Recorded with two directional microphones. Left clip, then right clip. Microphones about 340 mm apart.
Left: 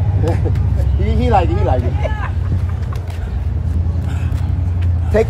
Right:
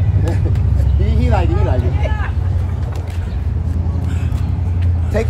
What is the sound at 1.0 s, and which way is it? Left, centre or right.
Speech, left.